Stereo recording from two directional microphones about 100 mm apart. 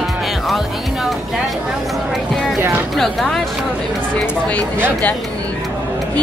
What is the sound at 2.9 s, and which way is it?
Speech, 5° left (ahead or behind).